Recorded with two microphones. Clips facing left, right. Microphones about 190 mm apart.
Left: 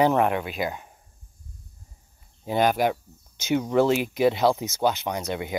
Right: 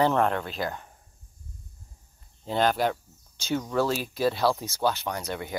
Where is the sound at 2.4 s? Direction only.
15° left (ahead or behind).